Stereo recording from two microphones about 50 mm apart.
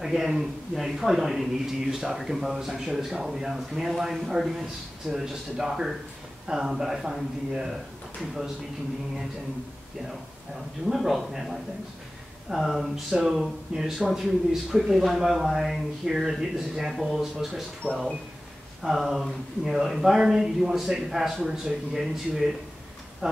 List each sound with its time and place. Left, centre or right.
0.0 s speech: centre
10.9 s speech: centre